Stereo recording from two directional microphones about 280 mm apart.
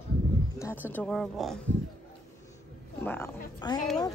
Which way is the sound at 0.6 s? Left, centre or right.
Centre.